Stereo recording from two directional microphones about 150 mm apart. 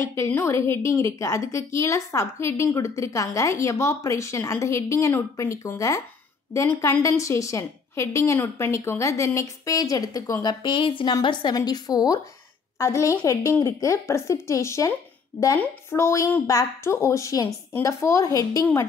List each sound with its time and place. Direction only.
0.0 s a woman's voice: 20° left (ahead or behind)